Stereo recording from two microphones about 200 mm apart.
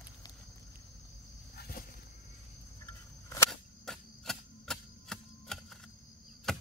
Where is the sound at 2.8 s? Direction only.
15° left (ahead or behind).